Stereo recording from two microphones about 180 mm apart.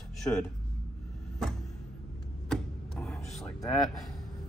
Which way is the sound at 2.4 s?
5° left (ahead or behind).